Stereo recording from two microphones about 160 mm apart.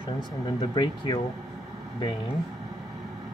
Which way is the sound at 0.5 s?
30° left (ahead or behind).